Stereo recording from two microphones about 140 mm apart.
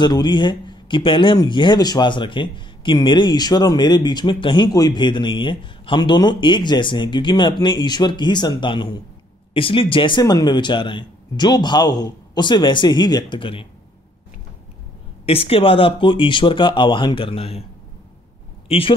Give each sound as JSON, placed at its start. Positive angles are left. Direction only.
{"t": 0.0, "sound": "speech", "side_deg": 30}
{"t": 15.2, "sound": "speech", "side_deg": 45}
{"t": 18.7, "sound": "speech", "side_deg": 40}